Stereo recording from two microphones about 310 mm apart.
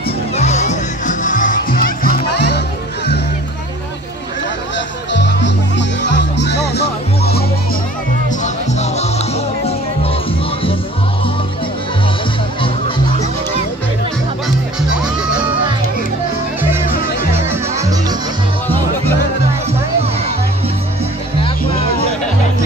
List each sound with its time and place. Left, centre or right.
0.4 s music: left
4.7 s music: left
8.7 s music: left
17.5 s music: centre